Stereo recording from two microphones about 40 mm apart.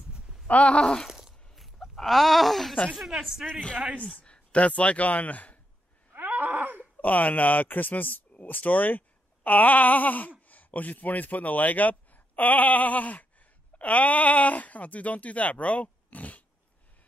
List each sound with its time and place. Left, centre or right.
0.5 s speech: left
1.0 s a sound: centre
3.0 s a woman's voice: centre
4.3 s speech: left
6.1 s groan: right
6.8 s speech: left